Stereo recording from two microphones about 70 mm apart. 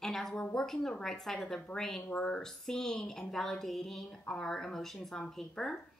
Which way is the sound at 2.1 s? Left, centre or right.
Centre.